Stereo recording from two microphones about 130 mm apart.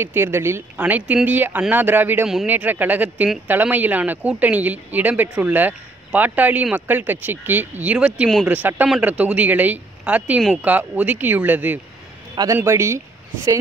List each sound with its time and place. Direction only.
0.0 s speech: 15° right (ahead or behind)